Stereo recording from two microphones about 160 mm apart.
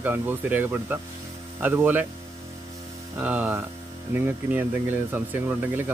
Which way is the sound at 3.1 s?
10° right (ahead or behind).